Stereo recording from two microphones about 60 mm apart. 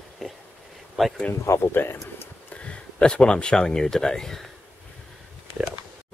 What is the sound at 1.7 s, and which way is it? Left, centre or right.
Speech, left.